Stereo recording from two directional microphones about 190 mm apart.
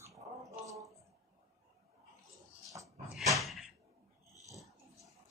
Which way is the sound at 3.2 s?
Centre (ahead or behind).